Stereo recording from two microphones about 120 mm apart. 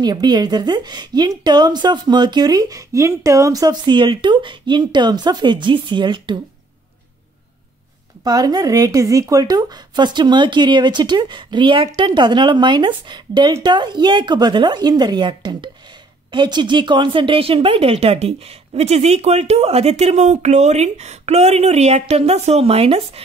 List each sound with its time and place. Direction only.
0.0 s speech: 35° right (ahead or behind)
8.2 s speech: 35° right (ahead or behind); by 23.2 s 55° right (ahead or behind)